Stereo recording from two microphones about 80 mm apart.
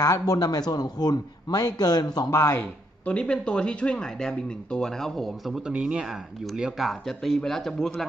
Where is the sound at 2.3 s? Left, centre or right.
Left.